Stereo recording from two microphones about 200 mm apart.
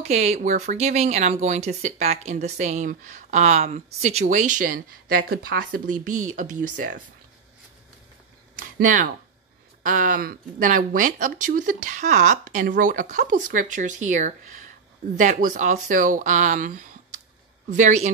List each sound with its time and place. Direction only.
0.0 s speech: 35° right (ahead or behind)
8.5 s speech: 40° right (ahead or behind)